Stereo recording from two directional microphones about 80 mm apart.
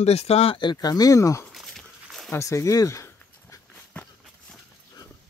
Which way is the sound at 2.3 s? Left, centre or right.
Left.